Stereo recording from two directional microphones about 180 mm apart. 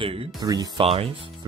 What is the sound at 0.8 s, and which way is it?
Speech, 35° right (ahead or behind).